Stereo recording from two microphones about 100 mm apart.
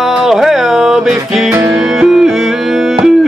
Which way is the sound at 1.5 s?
25° right (ahead or behind).